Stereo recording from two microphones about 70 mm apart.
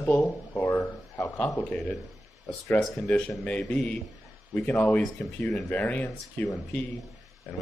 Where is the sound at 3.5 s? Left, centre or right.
Centre.